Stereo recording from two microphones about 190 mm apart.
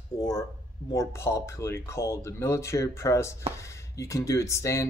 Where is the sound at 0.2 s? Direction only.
20° left (ahead or behind).